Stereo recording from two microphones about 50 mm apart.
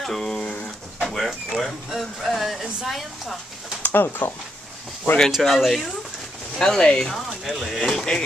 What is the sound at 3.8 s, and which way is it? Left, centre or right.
Speech, left.